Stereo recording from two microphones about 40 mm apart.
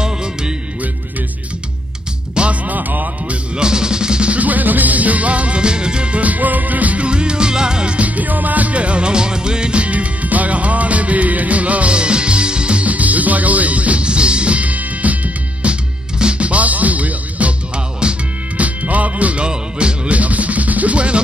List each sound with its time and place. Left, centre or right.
2.4 s music: right
2.7 s music: right
3.5 s music: centre
4.3 s music: right
6.2 s music: right
7.1 s music: right
8.2 s music: right
12.8 s music: right
18.0 s music: right
18.6 s music: right
19.4 s music: right
20.2 s music: right